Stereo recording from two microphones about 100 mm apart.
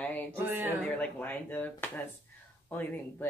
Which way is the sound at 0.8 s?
15° left (ahead or behind).